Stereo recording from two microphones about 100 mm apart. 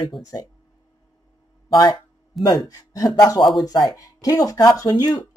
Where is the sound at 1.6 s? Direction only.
45° left (ahead or behind).